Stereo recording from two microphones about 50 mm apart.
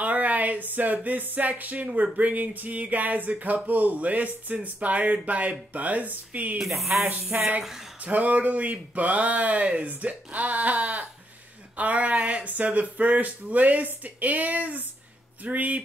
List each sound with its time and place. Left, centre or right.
0.0 s a sound: right
0.9 s speech: right
6.6 s speech: centre
7.3 s speech: right